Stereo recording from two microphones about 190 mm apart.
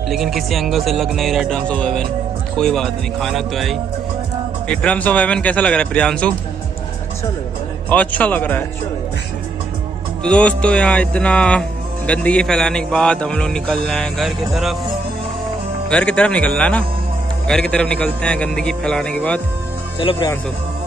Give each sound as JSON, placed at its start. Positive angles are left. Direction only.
{"t": 0.1, "sound": "a man's voice", "side_deg": 0}
{"t": 7.9, "sound": "speech", "side_deg": 10}
{"t": 10.2, "sound": "a man's voice", "side_deg": 5}
{"t": 15.9, "sound": "a man's voice", "side_deg": 5}
{"t": 20.0, "sound": "speech", "side_deg": 25}